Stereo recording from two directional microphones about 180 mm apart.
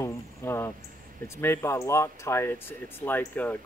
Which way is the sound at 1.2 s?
15° left (ahead or behind).